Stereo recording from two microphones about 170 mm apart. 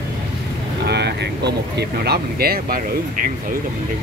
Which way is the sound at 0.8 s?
75° right (ahead or behind).